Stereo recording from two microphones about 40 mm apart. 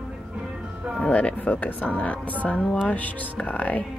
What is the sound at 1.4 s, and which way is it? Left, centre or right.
Speech, left.